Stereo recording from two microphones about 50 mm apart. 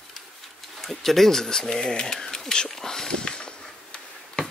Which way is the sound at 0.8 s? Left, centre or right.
Centre.